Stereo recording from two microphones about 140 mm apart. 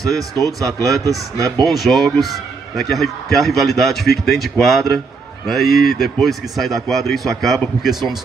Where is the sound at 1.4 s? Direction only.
25° right (ahead or behind).